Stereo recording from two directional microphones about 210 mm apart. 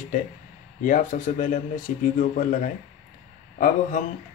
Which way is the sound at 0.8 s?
40° left (ahead or behind).